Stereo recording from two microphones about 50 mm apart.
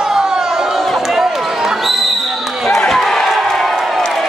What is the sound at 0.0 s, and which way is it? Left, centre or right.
Chatter, centre.